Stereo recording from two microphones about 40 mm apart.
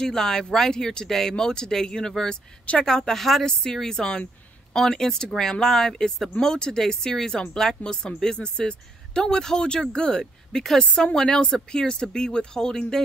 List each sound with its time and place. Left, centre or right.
0.0 s speech: centre
11.1 s speech: centre